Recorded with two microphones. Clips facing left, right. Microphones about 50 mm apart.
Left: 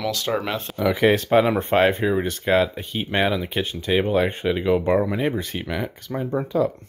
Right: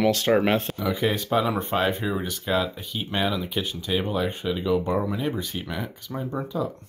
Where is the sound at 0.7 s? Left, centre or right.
Left.